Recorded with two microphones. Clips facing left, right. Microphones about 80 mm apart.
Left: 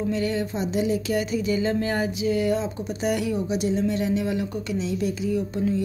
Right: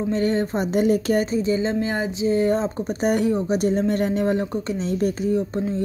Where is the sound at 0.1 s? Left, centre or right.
Right.